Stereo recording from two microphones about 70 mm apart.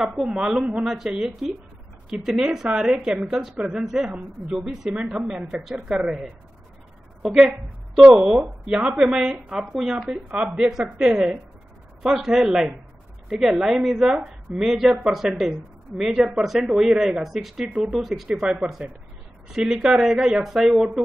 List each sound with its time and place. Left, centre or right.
0.0 s a woman's voice: centre